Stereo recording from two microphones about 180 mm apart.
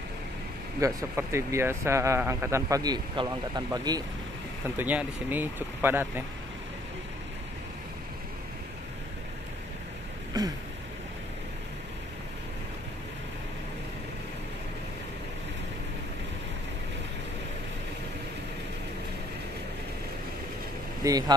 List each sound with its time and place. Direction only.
0.7 s speech: 15° right (ahead or behind)
4.6 s speech: 10° right (ahead or behind)
10.3 s a sound: 20° right (ahead or behind)
21.0 s speech: 20° right (ahead or behind)